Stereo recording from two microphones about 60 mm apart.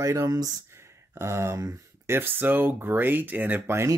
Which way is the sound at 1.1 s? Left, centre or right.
Right.